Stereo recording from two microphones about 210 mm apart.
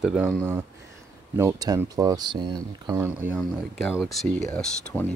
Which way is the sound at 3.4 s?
Centre (ahead or behind).